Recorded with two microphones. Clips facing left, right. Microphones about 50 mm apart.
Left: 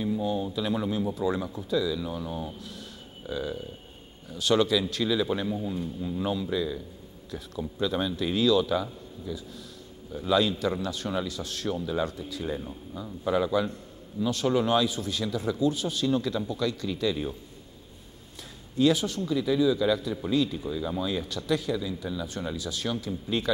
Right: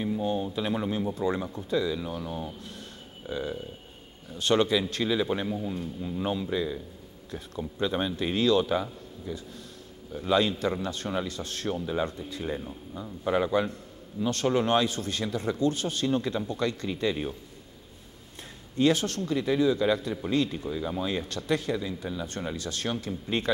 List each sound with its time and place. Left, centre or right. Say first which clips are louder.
0.0 s a sound: even; right
1.1 s speech: even; right
2.0 s speech: left 1 dB; right
13.3 s speech: even; right
16.1 s speech: left 1 dB; right
18.8 s speech: left 1 dB; right
19.3 s speech: left 1 dB; right
20.6 s speech: even; right
21.0 s speech: even; right